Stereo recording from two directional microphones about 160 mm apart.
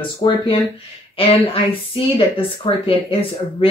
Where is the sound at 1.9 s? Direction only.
35° left (ahead or behind).